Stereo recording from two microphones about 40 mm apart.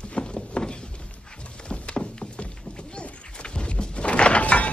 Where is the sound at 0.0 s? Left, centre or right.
Left.